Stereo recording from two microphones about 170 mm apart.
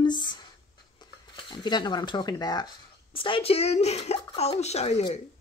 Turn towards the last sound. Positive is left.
turn(degrees=40)  # may be behind; listen again after turning